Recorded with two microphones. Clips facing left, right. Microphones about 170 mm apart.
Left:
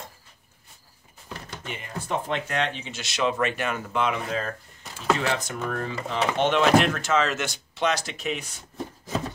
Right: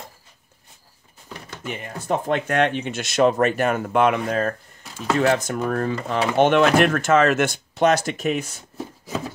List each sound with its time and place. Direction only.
1.7 s speech: 50° right (ahead or behind)